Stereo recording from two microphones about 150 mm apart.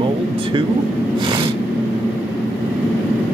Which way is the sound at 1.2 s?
30° right (ahead or behind).